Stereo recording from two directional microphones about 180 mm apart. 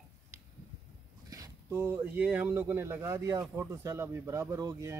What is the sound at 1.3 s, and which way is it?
Speech, 15° right (ahead or behind).